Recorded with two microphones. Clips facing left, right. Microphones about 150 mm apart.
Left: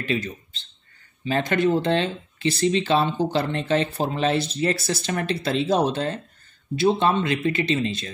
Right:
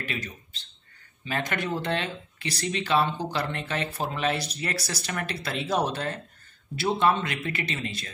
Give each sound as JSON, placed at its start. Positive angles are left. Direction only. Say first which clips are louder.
{"t": 0.0, "sound": "speech", "louder": "left 9 dB", "side_deg": 30}